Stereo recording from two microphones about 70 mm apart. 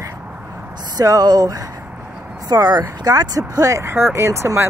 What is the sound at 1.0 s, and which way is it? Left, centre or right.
Speech, right.